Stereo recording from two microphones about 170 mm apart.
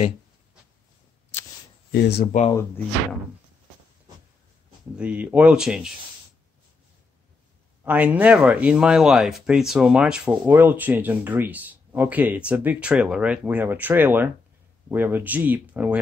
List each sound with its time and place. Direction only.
1.9 s speech: 70° left (ahead or behind)
4.9 s speech: 5° right (ahead or behind)
7.8 s speech: 10° right (ahead or behind)